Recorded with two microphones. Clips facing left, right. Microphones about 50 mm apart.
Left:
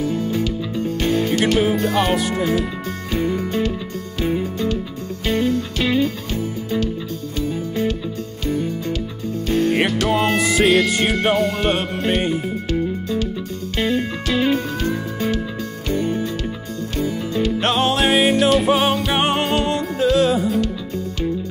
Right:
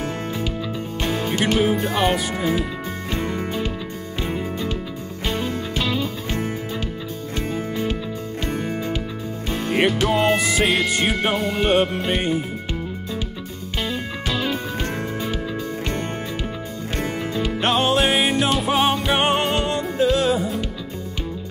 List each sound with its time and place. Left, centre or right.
0.3 s music: centre
1.4 s speech: centre
3.2 s music: right
5.2 s music: centre
9.5 s music: centre
15.9 s music: right
17.6 s music: centre